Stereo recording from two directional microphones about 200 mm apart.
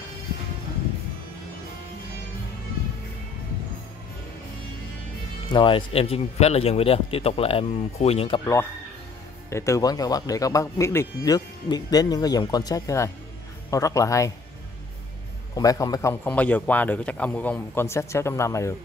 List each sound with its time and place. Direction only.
5.5 s a man's voice: 25° left (ahead or behind)
9.5 s speech: 15° left (ahead or behind)
15.5 s speech: 15° left (ahead or behind)